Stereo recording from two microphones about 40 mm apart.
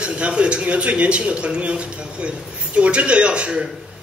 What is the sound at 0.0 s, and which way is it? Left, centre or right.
A man's voice, right.